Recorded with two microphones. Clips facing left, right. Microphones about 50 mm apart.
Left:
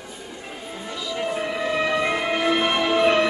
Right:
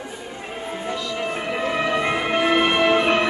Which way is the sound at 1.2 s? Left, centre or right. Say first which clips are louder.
Left 1 dB; right.